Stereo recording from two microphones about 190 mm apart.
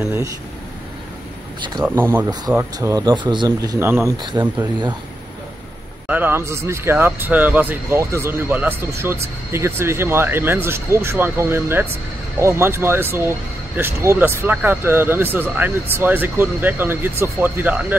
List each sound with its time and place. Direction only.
0.0 s speech: 10° right (ahead or behind)
1.9 s speech: 10° right (ahead or behind)
6.0 s speech: 10° right (ahead or behind)